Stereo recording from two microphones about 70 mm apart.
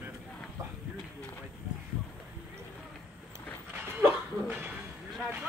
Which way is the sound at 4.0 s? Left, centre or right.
Right.